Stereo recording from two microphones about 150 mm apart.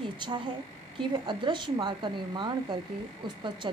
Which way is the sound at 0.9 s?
30° right (ahead or behind).